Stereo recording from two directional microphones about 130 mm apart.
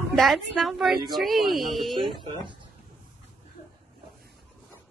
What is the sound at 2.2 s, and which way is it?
Speech, 35° right (ahead or behind).